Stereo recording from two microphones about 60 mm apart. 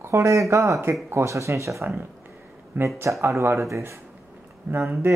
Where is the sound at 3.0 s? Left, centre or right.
Right.